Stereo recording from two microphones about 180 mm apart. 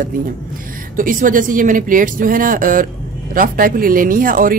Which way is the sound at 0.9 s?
50° right (ahead or behind).